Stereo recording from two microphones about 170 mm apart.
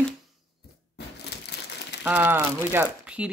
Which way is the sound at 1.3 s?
75° left (ahead or behind).